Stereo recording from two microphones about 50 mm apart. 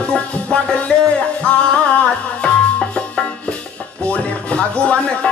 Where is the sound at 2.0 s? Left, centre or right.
Centre.